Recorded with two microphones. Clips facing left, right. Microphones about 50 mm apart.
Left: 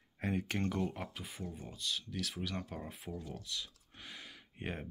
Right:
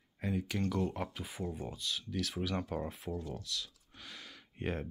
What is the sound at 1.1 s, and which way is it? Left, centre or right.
Speech, centre.